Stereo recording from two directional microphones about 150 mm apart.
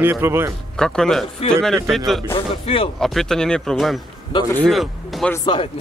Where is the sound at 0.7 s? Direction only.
5° left (ahead or behind).